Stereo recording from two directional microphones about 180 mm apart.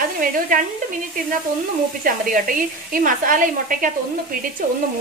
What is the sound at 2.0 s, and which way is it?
Speech, 50° right (ahead or behind).